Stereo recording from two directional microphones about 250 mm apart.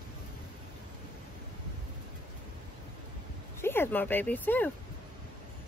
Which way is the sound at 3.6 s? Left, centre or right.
Centre.